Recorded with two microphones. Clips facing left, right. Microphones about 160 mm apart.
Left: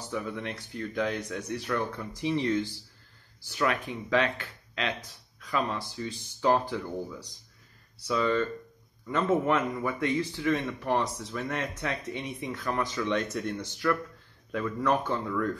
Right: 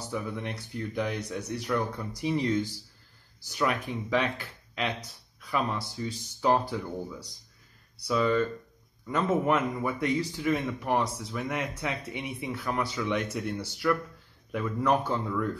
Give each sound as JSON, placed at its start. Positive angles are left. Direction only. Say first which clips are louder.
{"t": 0.4, "sound": "speech", "louder": "even", "side_deg": -15}